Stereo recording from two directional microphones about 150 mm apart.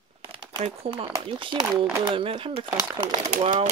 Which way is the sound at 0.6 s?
40° right (ahead or behind).